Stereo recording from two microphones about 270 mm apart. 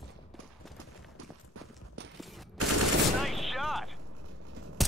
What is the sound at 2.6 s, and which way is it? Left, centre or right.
Fusillade, right.